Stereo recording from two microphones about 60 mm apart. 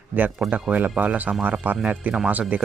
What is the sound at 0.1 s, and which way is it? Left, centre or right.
Speech, right.